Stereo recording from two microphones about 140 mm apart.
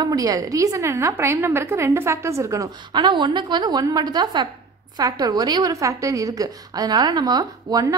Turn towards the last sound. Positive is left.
turn(degrees=-25)  # may be behind; listen again after turning